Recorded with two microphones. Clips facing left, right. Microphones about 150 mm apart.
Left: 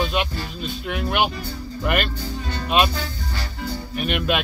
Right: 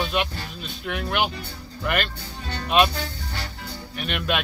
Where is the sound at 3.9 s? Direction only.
10° left (ahead or behind).